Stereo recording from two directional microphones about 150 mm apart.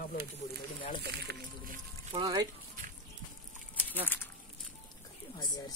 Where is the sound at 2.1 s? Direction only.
30° right (ahead or behind).